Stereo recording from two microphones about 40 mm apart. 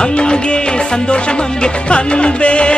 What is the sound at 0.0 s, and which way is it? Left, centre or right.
Music, left.